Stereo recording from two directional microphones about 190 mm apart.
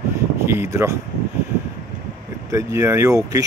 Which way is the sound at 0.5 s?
15° right (ahead or behind).